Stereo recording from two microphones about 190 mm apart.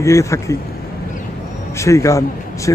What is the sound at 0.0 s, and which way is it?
Speech, 15° left (ahead or behind).